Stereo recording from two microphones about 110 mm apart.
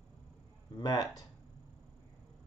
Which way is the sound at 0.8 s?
35° left (ahead or behind).